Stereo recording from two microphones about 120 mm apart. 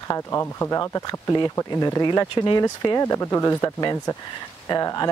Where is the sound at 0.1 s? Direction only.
25° left (ahead or behind).